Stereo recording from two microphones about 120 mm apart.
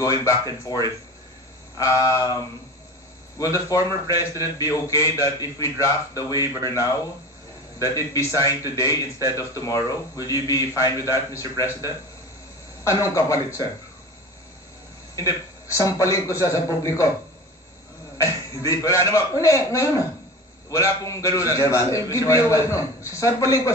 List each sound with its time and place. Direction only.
0.1 s a man's voice: 30° left (ahead or behind)
1.8 s a man's voice: 25° left (ahead or behind)
3.3 s a man's voice: 30° left (ahead or behind)
15.1 s a man's voice: 30° left (ahead or behind)
18.2 s a man's voice: 25° left (ahead or behind)